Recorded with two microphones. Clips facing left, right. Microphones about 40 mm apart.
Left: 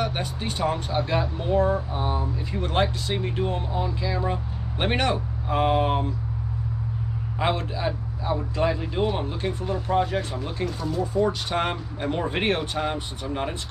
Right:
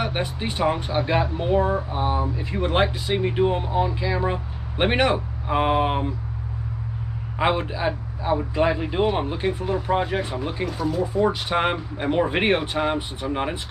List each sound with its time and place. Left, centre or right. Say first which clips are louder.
0.0 s a man's voice: right 2 dB; centre
7.3 s a man's voice: right 4 dB; centre